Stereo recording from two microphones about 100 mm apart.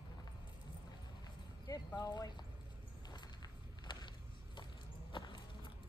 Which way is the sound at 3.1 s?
45° left (ahead or behind).